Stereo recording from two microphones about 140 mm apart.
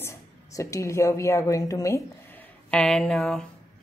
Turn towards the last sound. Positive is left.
turn(degrees=5)  # may be behind; listen again after turning